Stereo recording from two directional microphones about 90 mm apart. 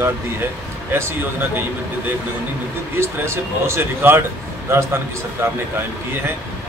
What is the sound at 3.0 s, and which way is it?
Speech, 30° right (ahead or behind).